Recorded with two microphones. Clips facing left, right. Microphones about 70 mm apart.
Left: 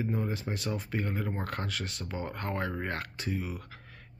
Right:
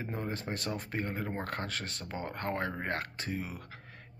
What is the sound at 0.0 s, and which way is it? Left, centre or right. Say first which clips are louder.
Speech: left 4 dB; right.